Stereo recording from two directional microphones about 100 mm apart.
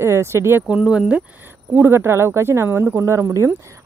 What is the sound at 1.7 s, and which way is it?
Speech, 25° right (ahead or behind).